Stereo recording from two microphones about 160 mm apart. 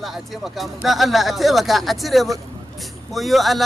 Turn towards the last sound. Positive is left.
turn(degrees=0)  # may be behind; listen again after turning